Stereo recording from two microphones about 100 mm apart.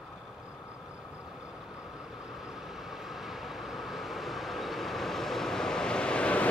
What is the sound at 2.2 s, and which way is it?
Vehicle, 5° right (ahead or behind).